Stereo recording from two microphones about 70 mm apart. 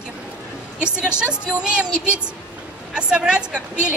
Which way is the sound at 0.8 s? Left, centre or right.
Centre.